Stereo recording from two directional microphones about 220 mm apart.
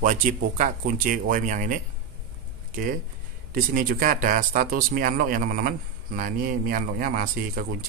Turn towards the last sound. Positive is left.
turn(degrees=-40)  # may be behind; listen again after turning